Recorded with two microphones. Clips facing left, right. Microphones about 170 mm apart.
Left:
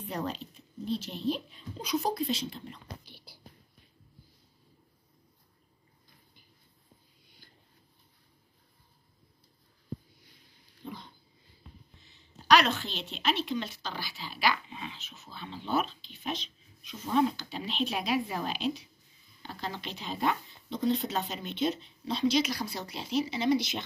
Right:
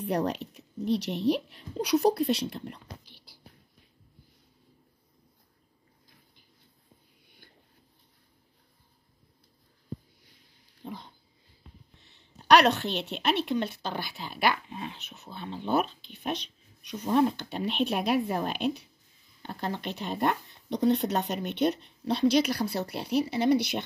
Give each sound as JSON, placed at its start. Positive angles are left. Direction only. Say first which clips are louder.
{"t": 0.0, "sound": "a woman's voice", "louder": "right 7 dB", "side_deg": -70}
{"t": 12.2, "sound": "speech", "louder": "right 4 dB", "side_deg": -65}